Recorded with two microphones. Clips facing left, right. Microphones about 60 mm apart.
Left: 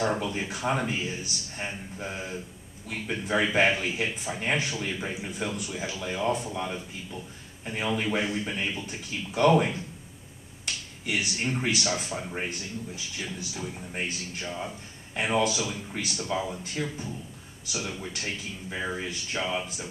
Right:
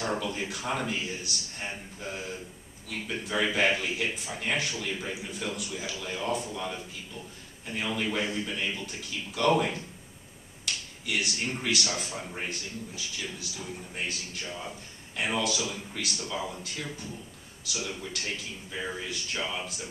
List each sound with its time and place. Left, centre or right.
0.0 s speech: left
9.5 s speech: centre
11.1 s speech: left